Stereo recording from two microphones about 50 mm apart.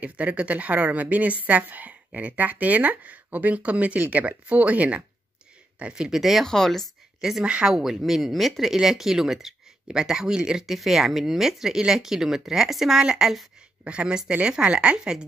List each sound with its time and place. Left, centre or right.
0.0 s speech: right; by 6.4 s centre
6.4 s speech: centre
7.2 s a woman's voice: centre